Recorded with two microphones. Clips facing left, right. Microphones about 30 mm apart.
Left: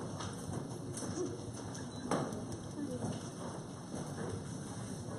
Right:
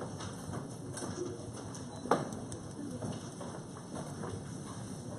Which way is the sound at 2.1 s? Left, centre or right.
Right.